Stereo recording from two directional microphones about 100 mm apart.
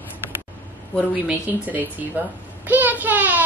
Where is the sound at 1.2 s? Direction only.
15° right (ahead or behind).